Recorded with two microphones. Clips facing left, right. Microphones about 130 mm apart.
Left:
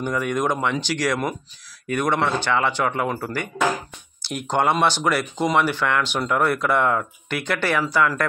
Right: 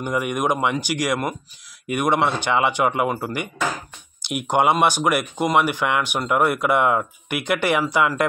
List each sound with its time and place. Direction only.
0.0 s speech: 15° right (ahead or behind)